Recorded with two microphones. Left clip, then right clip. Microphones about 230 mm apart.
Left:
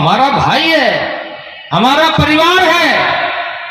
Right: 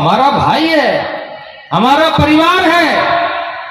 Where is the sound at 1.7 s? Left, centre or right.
Left.